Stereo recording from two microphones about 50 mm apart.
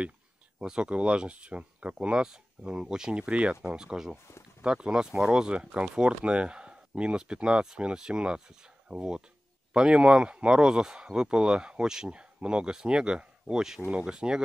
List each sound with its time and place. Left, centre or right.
0.6 s speech: centre
13.7 s speech: right
14.0 s speech: centre